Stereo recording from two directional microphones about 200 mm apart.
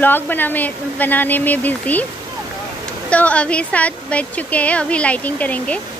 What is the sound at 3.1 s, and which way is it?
Speech, 5° left (ahead or behind).